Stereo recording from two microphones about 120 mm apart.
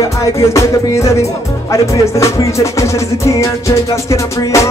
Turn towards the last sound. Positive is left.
turn(degrees=25)  # may be behind; listen again after turning